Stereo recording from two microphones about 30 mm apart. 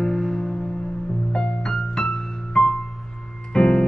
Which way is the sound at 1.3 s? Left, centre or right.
Left.